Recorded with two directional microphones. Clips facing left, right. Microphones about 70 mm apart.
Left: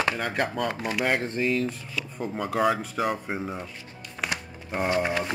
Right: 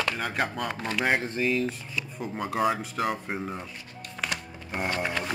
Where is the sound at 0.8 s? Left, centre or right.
Centre.